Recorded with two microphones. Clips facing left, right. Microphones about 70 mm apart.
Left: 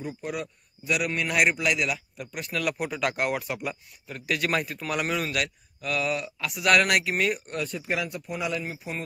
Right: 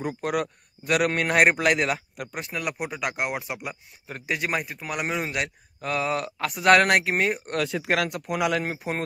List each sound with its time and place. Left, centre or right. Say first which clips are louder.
0.2 s a man's voice: right 6 dB; right
2.3 s speech: left 2 dB; right
6.2 s speech: right 5 dB; right
7.4 s speech: right 5 dB; right